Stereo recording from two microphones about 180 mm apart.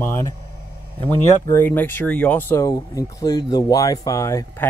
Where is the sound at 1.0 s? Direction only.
10° left (ahead or behind).